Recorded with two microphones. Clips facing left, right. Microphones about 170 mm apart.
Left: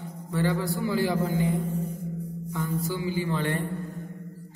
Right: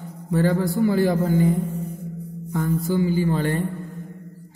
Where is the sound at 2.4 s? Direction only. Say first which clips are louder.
Right 7 dB; 55° right (ahead or behind).